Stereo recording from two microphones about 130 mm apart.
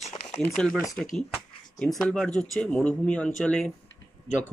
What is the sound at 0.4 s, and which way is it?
Speech, 5° left (ahead or behind).